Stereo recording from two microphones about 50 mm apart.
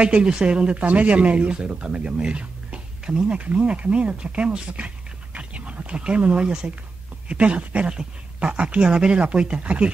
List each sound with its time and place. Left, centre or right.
0.0 s speech: right